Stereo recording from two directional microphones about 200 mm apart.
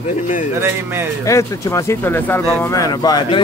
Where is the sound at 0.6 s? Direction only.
10° right (ahead or behind).